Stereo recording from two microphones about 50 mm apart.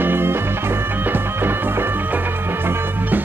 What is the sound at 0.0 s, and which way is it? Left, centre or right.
Music, right.